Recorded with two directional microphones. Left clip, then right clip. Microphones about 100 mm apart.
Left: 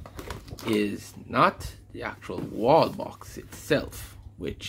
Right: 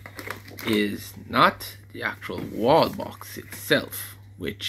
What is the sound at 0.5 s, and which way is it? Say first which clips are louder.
Speech: right 2 dB; 5° left (ahead or behind).